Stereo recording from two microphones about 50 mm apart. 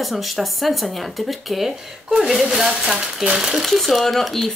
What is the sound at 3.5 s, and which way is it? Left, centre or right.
Speech, centre.